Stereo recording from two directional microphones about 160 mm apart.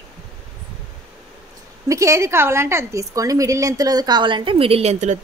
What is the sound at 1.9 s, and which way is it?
A woman's voice, 20° right (ahead or behind).